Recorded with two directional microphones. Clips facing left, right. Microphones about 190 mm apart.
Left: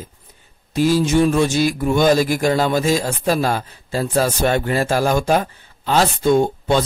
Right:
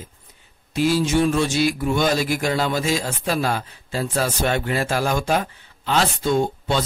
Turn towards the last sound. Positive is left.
turn(degrees=50)  # may be behind; listen again after turning